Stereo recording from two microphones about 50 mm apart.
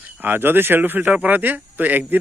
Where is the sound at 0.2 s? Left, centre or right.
Right.